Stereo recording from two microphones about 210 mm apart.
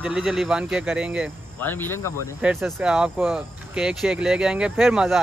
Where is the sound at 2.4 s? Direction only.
5° right (ahead or behind).